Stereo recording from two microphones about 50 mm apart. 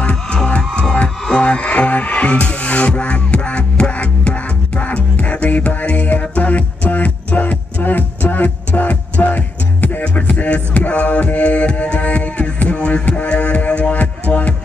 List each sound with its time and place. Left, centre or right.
0.1 s music: left